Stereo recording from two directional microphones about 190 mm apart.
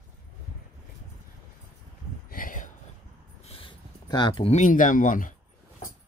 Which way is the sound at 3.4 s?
30° left (ahead or behind).